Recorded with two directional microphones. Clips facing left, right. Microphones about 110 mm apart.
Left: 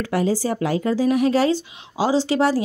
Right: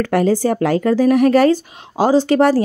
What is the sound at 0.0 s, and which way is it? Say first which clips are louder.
Speech: right 6 dB; 60° right (ahead or behind).